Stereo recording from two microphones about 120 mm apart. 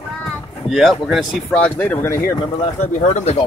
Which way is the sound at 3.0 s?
70° left (ahead or behind).